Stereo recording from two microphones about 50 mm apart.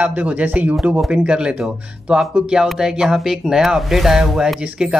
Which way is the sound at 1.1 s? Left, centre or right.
Centre.